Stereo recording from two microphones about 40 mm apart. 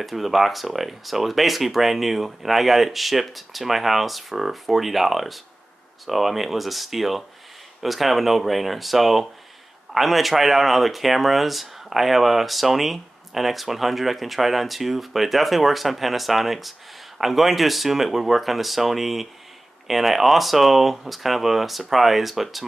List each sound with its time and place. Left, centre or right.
0.0 s speech: centre